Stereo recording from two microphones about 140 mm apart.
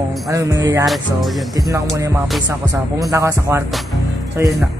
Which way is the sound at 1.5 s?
25° right (ahead or behind).